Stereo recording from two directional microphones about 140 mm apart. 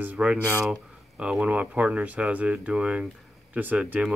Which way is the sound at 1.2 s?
5° right (ahead or behind).